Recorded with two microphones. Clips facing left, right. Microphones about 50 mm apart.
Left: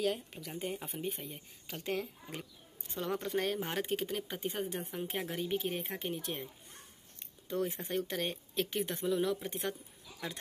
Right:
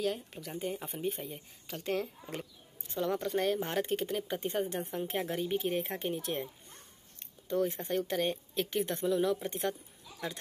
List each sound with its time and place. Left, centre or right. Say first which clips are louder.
0.0 s speech: even; centre
1.7 s speech: right 3 dB; centre
3.0 s speech: right 3 dB; centre
7.2 s a sound: right 4 dB; centre
8.1 s speech: right 5 dB; centre